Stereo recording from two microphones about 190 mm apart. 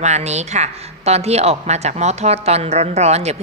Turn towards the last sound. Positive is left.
turn(degrees=-35)  # may be behind; listen again after turning